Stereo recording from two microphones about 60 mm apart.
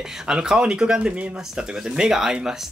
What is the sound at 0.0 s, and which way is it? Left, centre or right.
Speech, centre.